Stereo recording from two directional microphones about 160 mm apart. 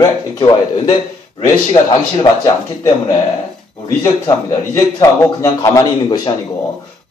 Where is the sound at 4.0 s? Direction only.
20° left (ahead or behind).